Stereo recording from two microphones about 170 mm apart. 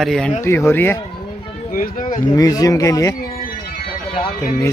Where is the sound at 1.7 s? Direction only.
55° left (ahead or behind).